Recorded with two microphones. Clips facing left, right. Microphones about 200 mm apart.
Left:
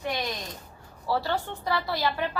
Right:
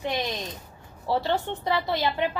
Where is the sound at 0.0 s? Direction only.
25° right (ahead or behind).